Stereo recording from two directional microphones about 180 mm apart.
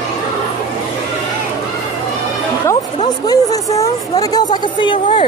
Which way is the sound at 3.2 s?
20° left (ahead or behind).